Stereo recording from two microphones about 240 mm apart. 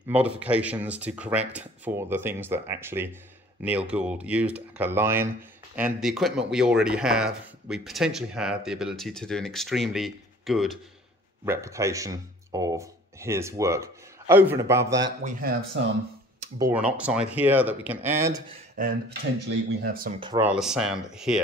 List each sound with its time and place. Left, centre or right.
0.1 s speech: centre
11.4 s speech: centre
16.5 s speech: centre
18.8 s speech: right
20.2 s speech: centre
20.4 s speech: centre